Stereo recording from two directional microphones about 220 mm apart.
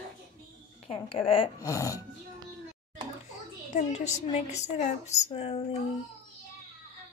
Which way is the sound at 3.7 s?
30° left (ahead or behind).